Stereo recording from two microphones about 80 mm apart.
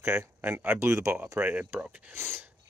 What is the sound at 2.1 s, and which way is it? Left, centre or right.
Speech, right.